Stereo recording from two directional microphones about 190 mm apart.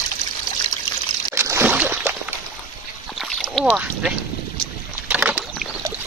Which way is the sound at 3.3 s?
5° left (ahead or behind).